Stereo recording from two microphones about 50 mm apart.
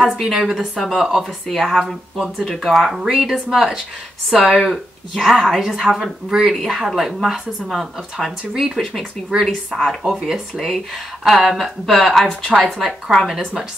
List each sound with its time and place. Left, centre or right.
0.2 s a woman's voice: centre
9.3 s speech: right
9.7 s a woman's voice: centre